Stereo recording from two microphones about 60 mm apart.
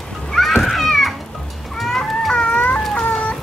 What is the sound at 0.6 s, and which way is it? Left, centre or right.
Children playing, centre.